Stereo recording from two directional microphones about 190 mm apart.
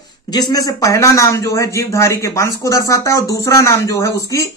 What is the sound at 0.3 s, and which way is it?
A man's voice, 20° left (ahead or behind).